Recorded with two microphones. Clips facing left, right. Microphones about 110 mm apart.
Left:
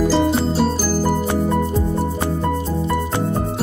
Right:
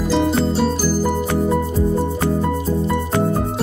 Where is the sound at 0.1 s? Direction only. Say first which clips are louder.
Even; 5° left (ahead or behind).